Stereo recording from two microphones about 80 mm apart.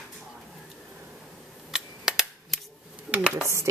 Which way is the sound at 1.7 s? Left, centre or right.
Centre.